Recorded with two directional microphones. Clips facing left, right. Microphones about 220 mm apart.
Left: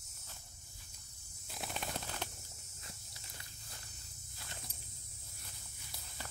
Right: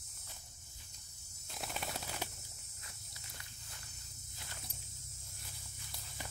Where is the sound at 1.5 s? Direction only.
Centre (ahead or behind).